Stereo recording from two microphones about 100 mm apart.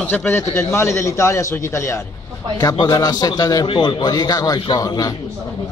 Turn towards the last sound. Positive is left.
turn(degrees=40)  # may be behind; listen again after turning